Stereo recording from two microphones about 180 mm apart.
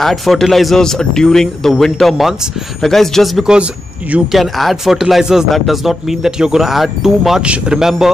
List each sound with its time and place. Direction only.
0.0 s speech: centre (ahead or behind)